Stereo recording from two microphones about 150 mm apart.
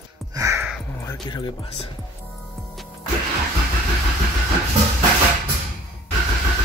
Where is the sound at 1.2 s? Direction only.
30° left (ahead or behind).